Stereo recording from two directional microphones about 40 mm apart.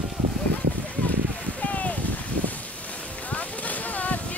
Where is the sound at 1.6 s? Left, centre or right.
Left.